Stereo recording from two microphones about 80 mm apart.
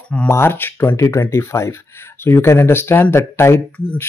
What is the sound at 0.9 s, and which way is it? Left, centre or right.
Speech, left.